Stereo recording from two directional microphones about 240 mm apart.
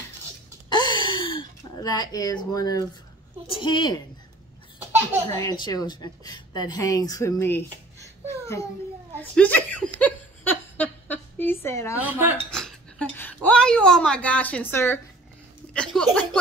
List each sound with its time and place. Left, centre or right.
0.7 s gasp: centre
3.4 s a woman's voice: left
4.7 s baby laughter: centre
5.3 s a woman's voice: centre
9.9 s a sound: centre
12.0 s speech: centre
12.4 s chink: centre
15.7 s speech: centre